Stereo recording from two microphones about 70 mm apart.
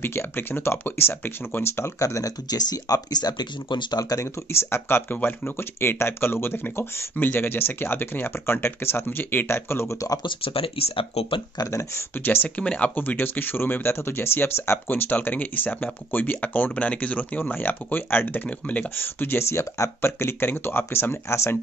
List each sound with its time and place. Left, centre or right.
0.0 s speech: left
2.0 s speech: left
4.5 s speech: left
11.5 s speech: left
12.2 s speech: left